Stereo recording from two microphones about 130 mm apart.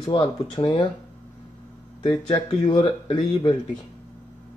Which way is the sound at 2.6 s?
45° left (ahead or behind).